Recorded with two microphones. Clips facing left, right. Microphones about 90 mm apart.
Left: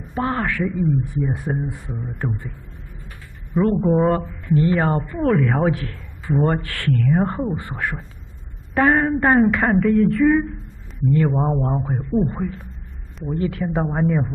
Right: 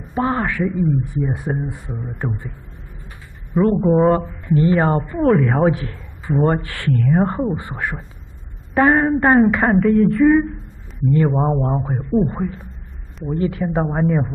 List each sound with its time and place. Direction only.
0.1 s a man's voice: 15° right (ahead or behind)
1.9 s speech: centre (ahead or behind)
3.5 s a man's voice: 10° right (ahead or behind)
6.2 s speech: 5° right (ahead or behind)
6.5 s a man's voice: 15° right (ahead or behind)